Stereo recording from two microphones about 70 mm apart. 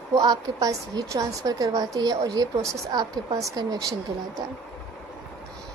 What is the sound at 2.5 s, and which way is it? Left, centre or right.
Speech, right.